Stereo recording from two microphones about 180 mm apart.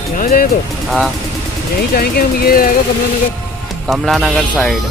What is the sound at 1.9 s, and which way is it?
Speech, 55° left (ahead or behind).